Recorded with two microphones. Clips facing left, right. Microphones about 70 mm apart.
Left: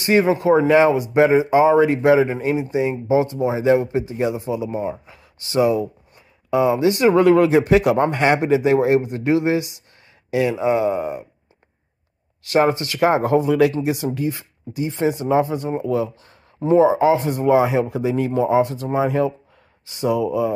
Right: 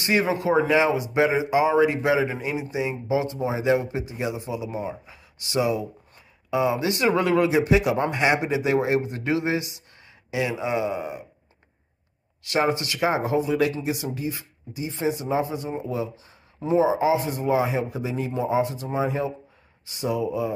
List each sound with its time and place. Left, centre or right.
0.0 s speech: left
12.5 s speech: left
13.1 s speech: left
16.5 s speech: left
20.0 s speech: left